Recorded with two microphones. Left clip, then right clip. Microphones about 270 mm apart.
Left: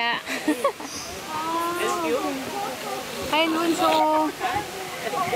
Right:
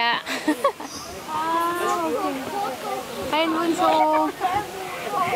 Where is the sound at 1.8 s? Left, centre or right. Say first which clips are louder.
Right 2 dB; centre.